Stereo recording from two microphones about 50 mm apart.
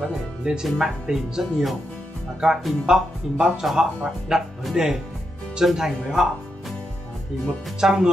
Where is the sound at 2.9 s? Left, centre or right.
Centre.